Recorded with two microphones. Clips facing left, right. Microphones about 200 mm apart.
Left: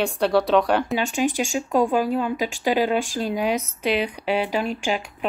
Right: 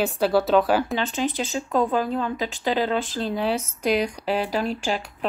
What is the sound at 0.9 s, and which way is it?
Speech, 15° left (ahead or behind).